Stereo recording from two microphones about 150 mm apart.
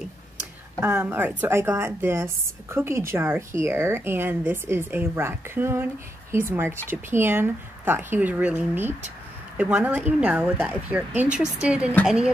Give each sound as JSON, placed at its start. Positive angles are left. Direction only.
{"t": 0.7, "sound": "a woman's voice", "side_deg": -10}